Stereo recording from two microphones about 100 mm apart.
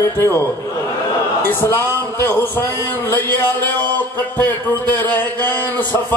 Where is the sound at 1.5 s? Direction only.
20° left (ahead or behind).